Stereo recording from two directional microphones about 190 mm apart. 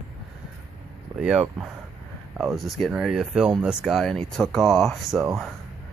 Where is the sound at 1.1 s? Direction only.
5° right (ahead or behind).